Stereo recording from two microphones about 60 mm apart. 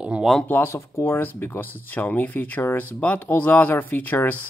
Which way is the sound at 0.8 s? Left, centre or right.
Left.